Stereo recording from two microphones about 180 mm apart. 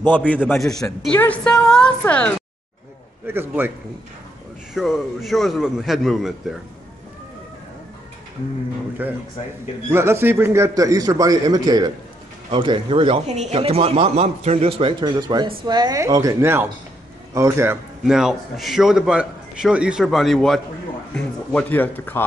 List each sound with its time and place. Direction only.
0.0 s a man's voice: 10° left (ahead or behind)
3.3 s a man's voice: 10° right (ahead or behind)
4.7 s a man's voice: centre (ahead or behind)
9.0 s a man's voice: 10° right (ahead or behind)
18.0 s a man's voice: 5° right (ahead or behind)